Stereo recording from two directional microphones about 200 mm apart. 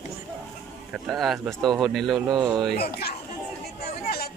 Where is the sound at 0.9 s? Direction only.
Centre (ahead or behind).